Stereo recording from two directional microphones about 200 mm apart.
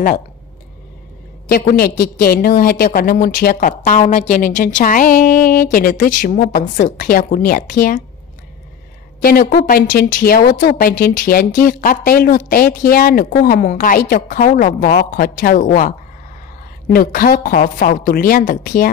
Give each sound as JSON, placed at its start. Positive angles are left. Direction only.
{"t": 1.5, "sound": "a woman's voice", "side_deg": 50}
{"t": 9.2, "sound": "a woman's voice", "side_deg": 50}
{"t": 16.9, "sound": "a woman's voice", "side_deg": 45}